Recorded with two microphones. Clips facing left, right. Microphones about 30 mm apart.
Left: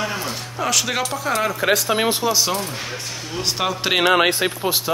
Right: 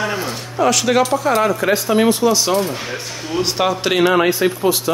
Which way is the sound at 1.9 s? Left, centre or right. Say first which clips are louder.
Right 5 dB; left.